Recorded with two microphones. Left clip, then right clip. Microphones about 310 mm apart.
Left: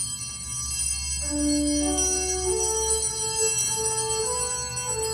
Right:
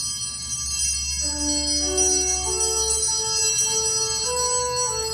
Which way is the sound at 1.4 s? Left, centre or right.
Centre.